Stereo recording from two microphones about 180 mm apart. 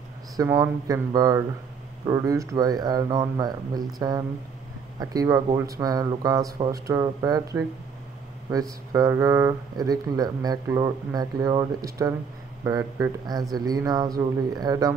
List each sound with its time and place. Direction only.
0.4 s speech: 20° right (ahead or behind)